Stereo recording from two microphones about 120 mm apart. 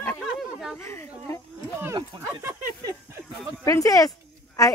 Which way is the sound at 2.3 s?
25° right (ahead or behind).